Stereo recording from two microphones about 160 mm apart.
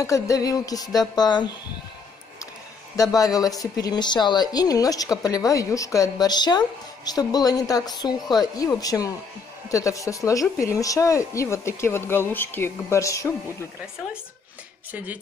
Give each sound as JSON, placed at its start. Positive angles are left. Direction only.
{"t": 0.0, "sound": "a woman's voice", "side_deg": 20}
{"t": 3.0, "sound": "a woman's voice", "side_deg": 20}
{"t": 14.9, "sound": "speech", "side_deg": -10}